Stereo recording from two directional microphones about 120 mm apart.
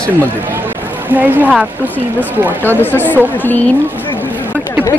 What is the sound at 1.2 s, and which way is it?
Speech, 15° right (ahead or behind).